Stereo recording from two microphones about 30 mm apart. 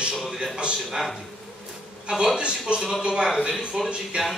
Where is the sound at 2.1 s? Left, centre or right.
Right.